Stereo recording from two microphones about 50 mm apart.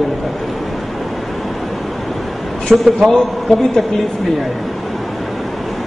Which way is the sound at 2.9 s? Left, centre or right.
Centre.